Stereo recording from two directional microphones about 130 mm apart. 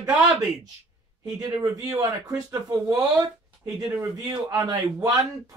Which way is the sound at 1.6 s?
20° right (ahead or behind).